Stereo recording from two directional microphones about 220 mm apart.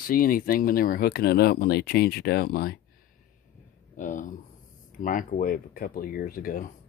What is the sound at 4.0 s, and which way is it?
Speech, 35° left (ahead or behind).